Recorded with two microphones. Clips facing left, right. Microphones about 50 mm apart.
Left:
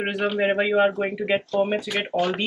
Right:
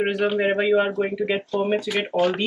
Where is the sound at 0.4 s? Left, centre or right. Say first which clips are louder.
Left 2 dB; centre.